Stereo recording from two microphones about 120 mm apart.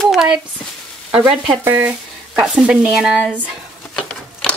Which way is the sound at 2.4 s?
10° right (ahead or behind).